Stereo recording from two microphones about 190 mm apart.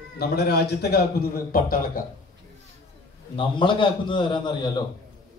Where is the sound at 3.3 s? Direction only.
25° left (ahead or behind).